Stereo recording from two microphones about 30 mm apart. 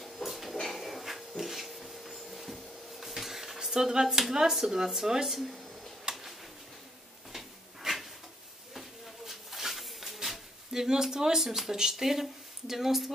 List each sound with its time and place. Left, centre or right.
0.0 s a sound: centre
0.6 s dog: centre
1.4 s printer: centre
3.7 s speech: right
6.1 s a sound: right
7.3 s drawer open or close: centre
9.2 s snake: centre
10.8 s speech: centre